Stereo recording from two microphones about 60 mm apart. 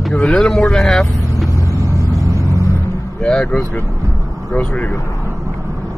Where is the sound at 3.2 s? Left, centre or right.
Centre.